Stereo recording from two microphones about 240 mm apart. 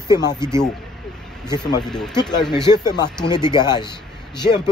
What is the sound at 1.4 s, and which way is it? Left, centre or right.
A man's voice, centre.